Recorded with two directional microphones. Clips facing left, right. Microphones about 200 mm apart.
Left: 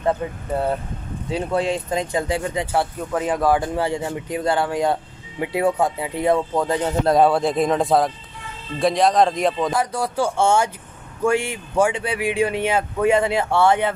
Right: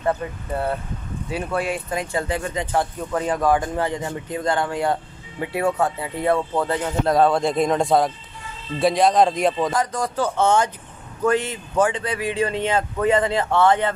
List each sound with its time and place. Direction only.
0.2 s speech: 20° left (ahead or behind); by 9.7 s centre (ahead or behind)
9.7 s speech: 10° left (ahead or behind)